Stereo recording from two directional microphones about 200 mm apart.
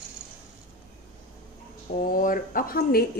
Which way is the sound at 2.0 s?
45° left (ahead or behind).